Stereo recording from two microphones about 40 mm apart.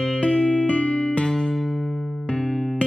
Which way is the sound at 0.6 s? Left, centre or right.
Left.